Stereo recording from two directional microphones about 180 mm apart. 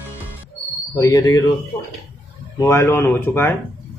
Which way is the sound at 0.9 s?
20° left (ahead or behind).